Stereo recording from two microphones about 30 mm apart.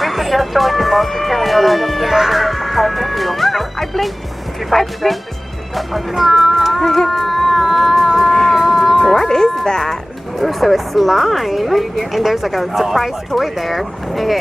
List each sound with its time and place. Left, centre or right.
0.0 s speech: centre
5.8 s speech: centre
6.8 s cat: centre
8.3 s a sound: centre
8.5 s music: centre
9.2 s speech: centre
10.4 s speech: centre